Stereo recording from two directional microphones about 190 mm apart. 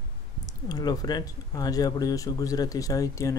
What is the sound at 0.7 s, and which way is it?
Speech, 20° left (ahead or behind).